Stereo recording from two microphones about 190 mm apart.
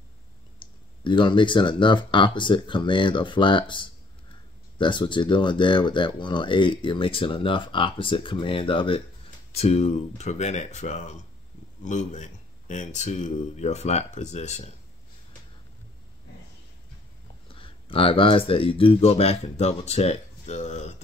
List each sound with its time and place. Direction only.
0.6 s speech: 25° left (ahead or behind)
17.5 s speech: 30° left (ahead or behind)